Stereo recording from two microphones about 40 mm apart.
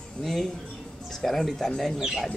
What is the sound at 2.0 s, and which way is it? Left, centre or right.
Speech, centre.